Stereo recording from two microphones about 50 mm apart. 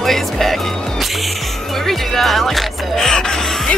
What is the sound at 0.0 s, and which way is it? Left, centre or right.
Music, centre.